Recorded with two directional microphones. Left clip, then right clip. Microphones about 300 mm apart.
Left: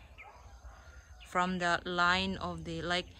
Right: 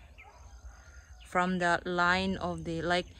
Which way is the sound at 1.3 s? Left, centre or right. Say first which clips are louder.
Right 3 dB; centre.